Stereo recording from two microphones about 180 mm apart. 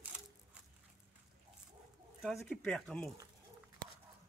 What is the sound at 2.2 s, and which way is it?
Speech, centre (ahead or behind).